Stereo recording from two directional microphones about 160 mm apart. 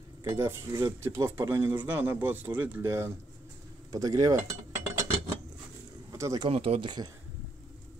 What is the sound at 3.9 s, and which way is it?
Cutlery, 20° right (ahead or behind).